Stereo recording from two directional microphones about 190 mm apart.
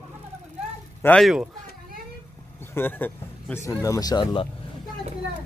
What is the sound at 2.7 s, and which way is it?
A man's voice, 10° left (ahead or behind).